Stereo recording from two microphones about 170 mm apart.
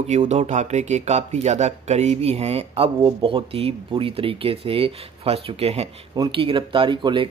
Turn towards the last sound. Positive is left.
turn(degrees=-30)  # may be behind; listen again after turning